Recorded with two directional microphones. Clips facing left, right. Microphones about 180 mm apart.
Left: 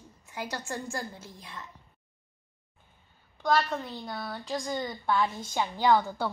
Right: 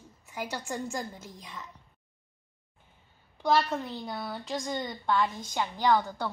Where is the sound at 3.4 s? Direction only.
5° right (ahead or behind).